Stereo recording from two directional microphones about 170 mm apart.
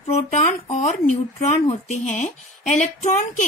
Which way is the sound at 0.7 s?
40° left (ahead or behind).